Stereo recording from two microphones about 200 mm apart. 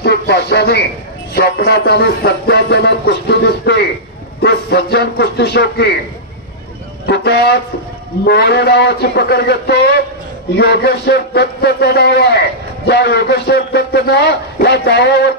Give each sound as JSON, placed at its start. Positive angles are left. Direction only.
{"t": 0.0, "sound": "speech", "side_deg": 55}
{"t": 1.3, "sound": "music", "side_deg": 50}
{"t": 7.1, "sound": "music", "side_deg": 55}